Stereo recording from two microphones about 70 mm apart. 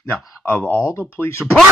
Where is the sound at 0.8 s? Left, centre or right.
Left.